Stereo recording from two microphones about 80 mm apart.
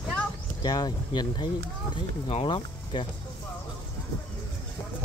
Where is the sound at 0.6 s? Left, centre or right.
Left.